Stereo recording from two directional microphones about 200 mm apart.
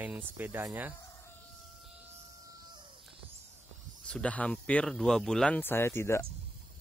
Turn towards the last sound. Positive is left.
turn(degrees=15)  # may be behind; listen again after turning